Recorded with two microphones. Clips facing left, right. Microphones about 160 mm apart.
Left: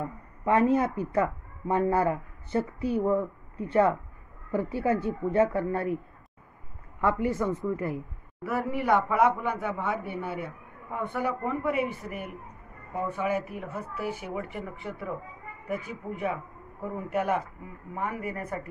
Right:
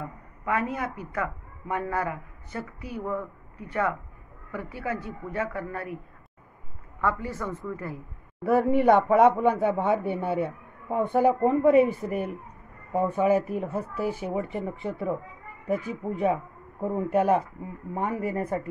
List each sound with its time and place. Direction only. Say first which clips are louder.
0.5 s speech: left 6 dB; 30° left (ahead or behind)
7.0 s speech: left 3 dB; 20° left (ahead or behind)
8.5 s speech: right 7 dB; 25° right (ahead or behind)